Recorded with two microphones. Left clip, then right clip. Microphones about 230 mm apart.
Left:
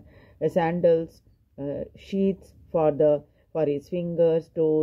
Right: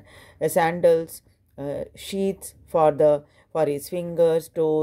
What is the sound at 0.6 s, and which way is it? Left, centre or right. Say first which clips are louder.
Speech: right 3 dB; right.